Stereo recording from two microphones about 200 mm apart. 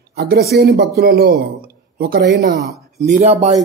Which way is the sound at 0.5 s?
55° right (ahead or behind).